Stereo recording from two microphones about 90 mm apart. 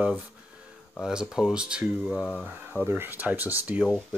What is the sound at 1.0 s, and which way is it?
Speech, 5° right (ahead or behind).